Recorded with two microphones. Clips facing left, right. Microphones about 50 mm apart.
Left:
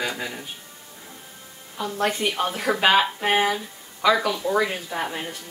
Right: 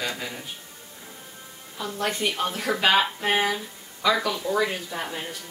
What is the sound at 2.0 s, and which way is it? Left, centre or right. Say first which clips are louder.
Speech: left 3 dB; centre.